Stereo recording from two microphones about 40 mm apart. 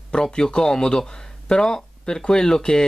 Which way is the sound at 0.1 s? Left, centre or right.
Centre.